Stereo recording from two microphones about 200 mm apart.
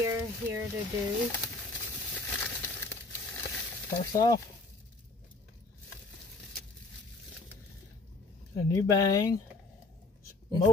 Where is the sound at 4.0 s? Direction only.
20° left (ahead or behind).